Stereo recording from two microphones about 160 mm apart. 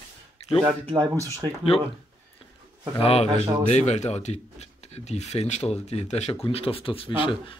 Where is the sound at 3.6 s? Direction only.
45° left (ahead or behind).